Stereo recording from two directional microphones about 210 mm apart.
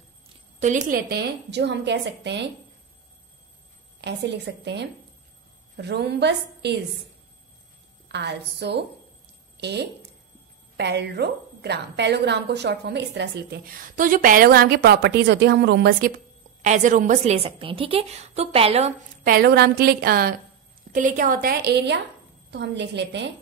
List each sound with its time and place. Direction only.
0.6 s a woman's voice: 35° right (ahead or behind); by 2.5 s 55° right (ahead or behind)
4.0 s a woman's voice: 55° right (ahead or behind)
8.1 s a woman's voice: 55° right (ahead or behind)
13.9 s a woman's voice: 40° right (ahead or behind)
16.6 s a woman's voice: 35° right (ahead or behind); by 23.3 s 55° right (ahead or behind)